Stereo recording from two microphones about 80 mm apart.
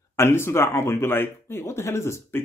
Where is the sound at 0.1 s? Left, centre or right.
Left.